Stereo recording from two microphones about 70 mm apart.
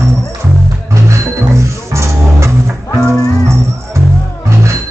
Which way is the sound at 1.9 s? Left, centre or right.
Right.